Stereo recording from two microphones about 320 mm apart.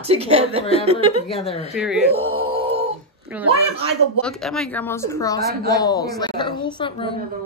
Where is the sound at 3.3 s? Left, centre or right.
Centre.